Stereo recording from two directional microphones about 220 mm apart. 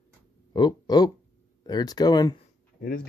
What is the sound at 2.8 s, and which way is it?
Speech, 40° left (ahead or behind).